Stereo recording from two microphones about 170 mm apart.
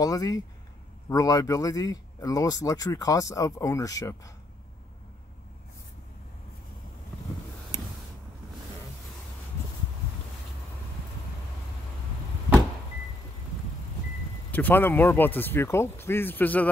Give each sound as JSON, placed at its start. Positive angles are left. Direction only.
{"t": 0.0, "sound": "speech", "side_deg": 20}
{"t": 14.5, "sound": "speech", "side_deg": 10}